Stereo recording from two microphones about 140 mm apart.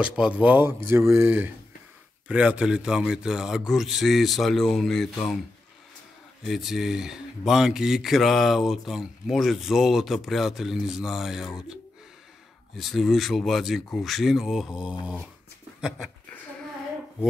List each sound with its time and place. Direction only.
0.0 s speech: 10° right (ahead or behind)
6.4 s speech: centre (ahead or behind)